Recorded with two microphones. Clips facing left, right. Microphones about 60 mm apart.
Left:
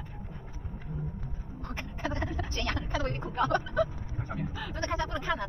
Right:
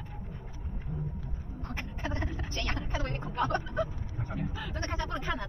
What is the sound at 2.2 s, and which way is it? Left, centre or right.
Vehicle, left.